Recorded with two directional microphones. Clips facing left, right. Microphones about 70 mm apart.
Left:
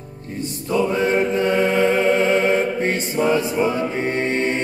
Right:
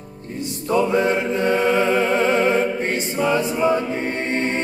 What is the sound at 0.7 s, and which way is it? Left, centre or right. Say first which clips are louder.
Music: right 1 dB; right.